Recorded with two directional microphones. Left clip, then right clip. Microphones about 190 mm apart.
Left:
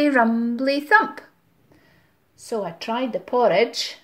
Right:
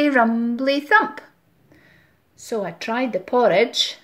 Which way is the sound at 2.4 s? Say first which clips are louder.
Right 1 dB; 5° right (ahead or behind).